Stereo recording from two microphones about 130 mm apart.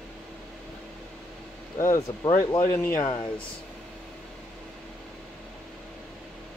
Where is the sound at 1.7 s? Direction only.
25° left (ahead or behind).